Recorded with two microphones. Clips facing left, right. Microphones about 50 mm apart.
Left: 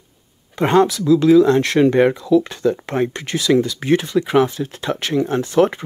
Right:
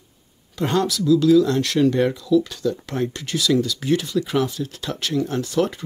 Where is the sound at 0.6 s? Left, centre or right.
Left.